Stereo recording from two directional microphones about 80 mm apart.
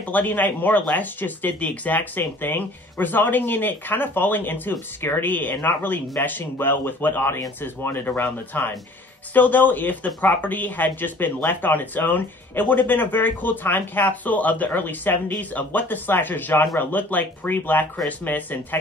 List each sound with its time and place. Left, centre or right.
0.0 s speech: left